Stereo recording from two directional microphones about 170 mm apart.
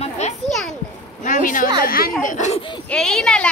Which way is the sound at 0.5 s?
Centre (ahead or behind).